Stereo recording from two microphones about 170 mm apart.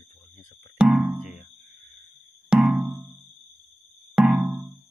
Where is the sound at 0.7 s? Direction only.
Centre (ahead or behind).